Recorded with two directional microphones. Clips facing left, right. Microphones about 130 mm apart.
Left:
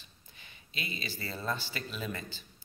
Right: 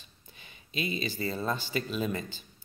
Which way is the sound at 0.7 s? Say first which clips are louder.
Right 8 dB; 20° right (ahead or behind).